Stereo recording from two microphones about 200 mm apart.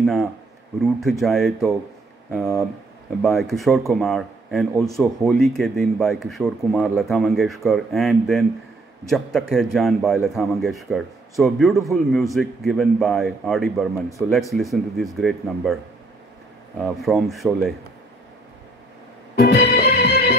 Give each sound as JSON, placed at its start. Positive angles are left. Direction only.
{"t": 0.0, "sound": "a man's voice", "side_deg": 0}
{"t": 16.8, "sound": "a man's voice", "side_deg": 0}
{"t": 19.3, "sound": "music", "side_deg": 50}